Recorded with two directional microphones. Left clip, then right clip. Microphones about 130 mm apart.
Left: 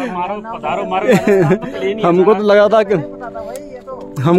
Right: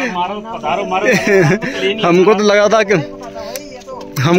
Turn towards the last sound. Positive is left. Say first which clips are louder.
# even
turn(degrees=5)  # may be behind; listen again after turning